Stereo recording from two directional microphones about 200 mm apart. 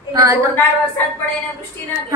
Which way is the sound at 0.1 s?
15° right (ahead or behind).